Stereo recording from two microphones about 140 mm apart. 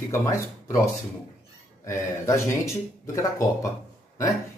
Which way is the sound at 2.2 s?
20° left (ahead or behind).